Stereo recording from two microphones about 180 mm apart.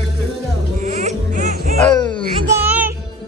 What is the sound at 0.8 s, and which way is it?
Music, 40° right (ahead or behind).